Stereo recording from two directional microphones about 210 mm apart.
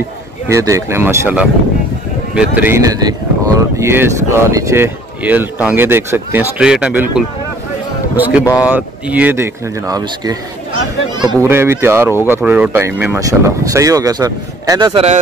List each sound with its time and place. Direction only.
0.5 s speech: 15° right (ahead or behind)
2.5 s speech: 10° right (ahead or behind)